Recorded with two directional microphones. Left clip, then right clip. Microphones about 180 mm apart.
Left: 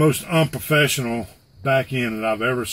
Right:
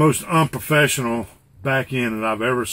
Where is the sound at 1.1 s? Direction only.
Centre (ahead or behind).